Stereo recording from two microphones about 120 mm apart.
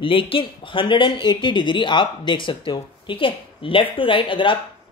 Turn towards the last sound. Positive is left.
turn(degrees=45)  # may be behind; listen again after turning